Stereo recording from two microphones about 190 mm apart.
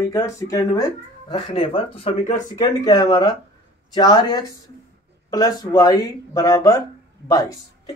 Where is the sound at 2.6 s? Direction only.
20° left (ahead or behind).